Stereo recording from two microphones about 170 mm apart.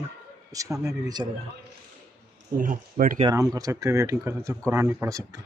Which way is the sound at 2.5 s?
50° right (ahead or behind).